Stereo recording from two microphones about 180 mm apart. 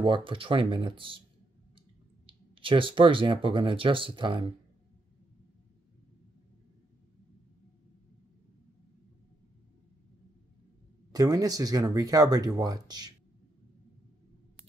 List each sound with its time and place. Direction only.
0.0 s speech: 25° right (ahead or behind)
11.1 s speech: 20° right (ahead or behind)